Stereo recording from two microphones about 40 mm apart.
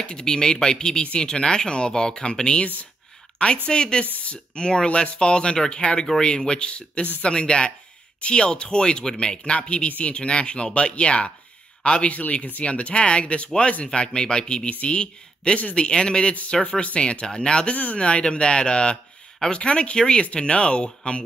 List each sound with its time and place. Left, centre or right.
0.0 s speech: centre
2.6 s speech: left
3.6 s speech: left
13.9 s speech: left